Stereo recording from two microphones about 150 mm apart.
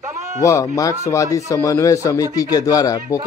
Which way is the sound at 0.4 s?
20° left (ahead or behind).